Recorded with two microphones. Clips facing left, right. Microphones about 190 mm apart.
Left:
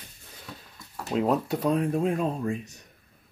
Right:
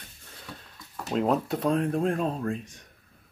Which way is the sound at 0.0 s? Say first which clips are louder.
Left 1 dB; 5° left (ahead or behind).